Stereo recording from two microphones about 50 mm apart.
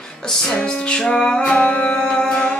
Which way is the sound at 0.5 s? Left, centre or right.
Centre.